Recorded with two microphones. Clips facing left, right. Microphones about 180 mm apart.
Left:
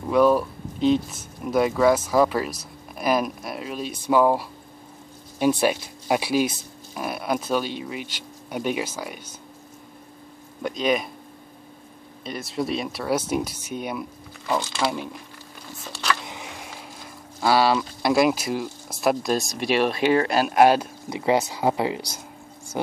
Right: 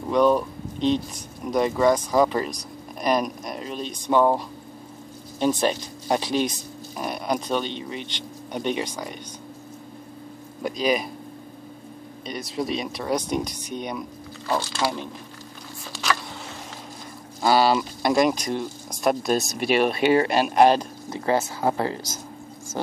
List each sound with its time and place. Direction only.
0.1 s speech: 5° left (ahead or behind)
10.6 s speech: centre (ahead or behind)
12.3 s speech: centre (ahead or behind)
16.3 s a sound: 15° left (ahead or behind)
17.4 s speech: centre (ahead or behind)